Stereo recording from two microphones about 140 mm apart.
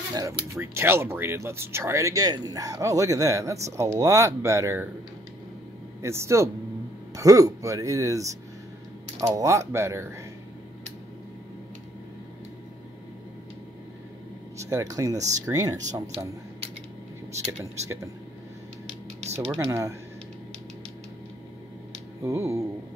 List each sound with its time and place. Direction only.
0.1 s speech: 25° right (ahead or behind)
6.0 s speech: 20° right (ahead or behind)
14.6 s speech: 20° right (ahead or behind)
17.5 s speech: 20° right (ahead or behind)
19.6 s speech: 20° right (ahead or behind)
22.2 s speech: 20° right (ahead or behind)